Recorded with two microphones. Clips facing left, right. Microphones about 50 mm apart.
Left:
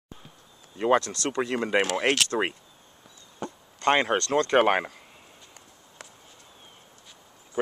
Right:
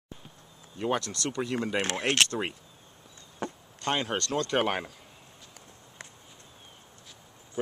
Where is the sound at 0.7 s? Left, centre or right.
Left.